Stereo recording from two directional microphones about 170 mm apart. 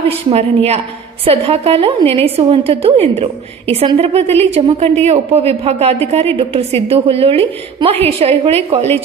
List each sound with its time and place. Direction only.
0.3 s a woman's voice: 40° right (ahead or behind)